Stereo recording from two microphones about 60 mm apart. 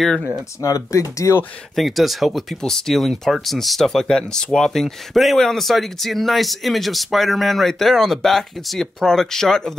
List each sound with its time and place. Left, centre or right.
0.6 s speech: left
1.8 s speech: centre
4.0 s speech: centre